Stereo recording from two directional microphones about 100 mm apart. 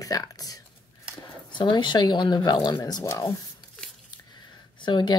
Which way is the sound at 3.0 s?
35° left (ahead or behind).